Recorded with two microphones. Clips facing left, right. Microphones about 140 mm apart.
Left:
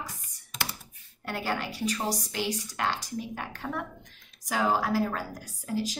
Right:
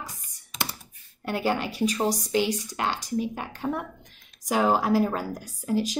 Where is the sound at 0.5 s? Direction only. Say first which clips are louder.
Right 3 dB; centre (ahead or behind).